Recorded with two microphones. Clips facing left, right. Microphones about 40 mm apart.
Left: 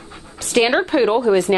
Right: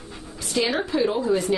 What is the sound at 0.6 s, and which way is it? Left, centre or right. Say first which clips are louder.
A woman's voice: left 7 dB; left.